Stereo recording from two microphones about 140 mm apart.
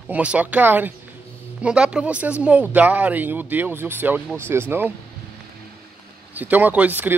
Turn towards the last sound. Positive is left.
turn(degrees=-15)  # may be behind; listen again after turning